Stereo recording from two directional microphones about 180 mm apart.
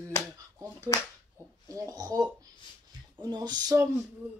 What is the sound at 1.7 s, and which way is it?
Speech, 20° right (ahead or behind).